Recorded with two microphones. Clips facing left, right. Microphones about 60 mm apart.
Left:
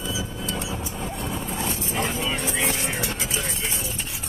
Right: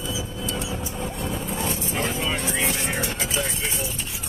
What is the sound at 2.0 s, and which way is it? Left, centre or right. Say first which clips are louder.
Vehicle: even; centre.